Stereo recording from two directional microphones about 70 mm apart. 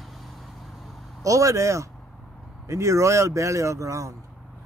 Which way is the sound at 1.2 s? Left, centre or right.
Right.